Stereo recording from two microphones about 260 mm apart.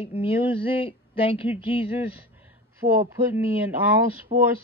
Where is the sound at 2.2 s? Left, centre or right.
Centre.